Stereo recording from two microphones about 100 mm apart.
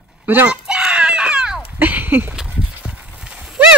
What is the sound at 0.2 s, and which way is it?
Speech, 20° right (ahead or behind).